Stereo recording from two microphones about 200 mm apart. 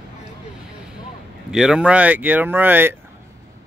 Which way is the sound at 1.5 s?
5° right (ahead or behind).